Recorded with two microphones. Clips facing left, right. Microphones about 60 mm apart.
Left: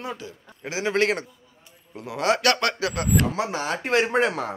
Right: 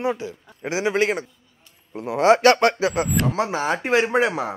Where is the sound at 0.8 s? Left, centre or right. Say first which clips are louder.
Right 1 dB; centre.